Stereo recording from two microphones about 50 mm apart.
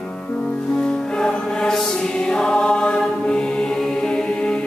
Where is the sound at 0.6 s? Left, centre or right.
Centre.